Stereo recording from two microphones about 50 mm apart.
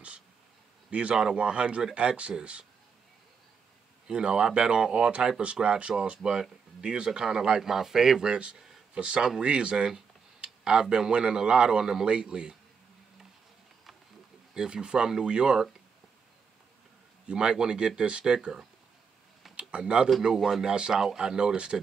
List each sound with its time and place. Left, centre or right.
0.8 s a man's voice: right
4.1 s speech: centre
8.5 s a sound: centre
9.0 s speech: centre
14.5 s speech: centre
17.3 s speech: centre
19.7 s speech: centre
20.3 s speech: centre
20.6 s speech: centre